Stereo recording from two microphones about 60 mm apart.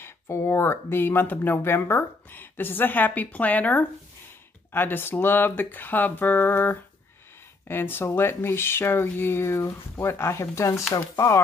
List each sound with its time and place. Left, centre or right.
0.0 s speech: left